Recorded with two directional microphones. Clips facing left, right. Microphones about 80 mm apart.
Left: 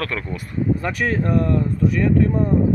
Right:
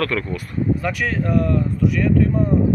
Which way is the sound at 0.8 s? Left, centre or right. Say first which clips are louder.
Left 1 dB; left.